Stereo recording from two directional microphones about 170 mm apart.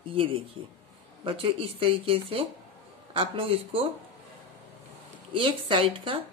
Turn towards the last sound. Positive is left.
turn(degrees=-30)  # may be behind; listen again after turning